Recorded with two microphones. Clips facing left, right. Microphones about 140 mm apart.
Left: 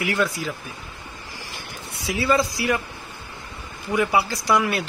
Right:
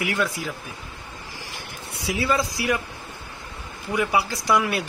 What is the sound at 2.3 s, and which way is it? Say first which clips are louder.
Speech: left 2 dB; 10° right (ahead or behind).